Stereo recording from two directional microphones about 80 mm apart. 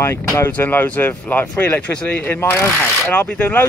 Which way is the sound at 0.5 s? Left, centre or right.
Left.